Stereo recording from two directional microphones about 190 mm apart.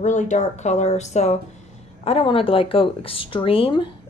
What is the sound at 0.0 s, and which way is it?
Speech, 40° left (ahead or behind).